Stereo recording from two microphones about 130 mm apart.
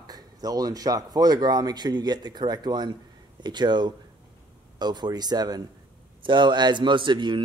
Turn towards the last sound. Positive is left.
turn(degrees=-35)  # may be behind; listen again after turning